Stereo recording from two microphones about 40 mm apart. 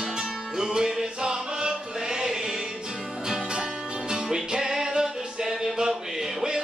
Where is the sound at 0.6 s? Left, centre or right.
Centre.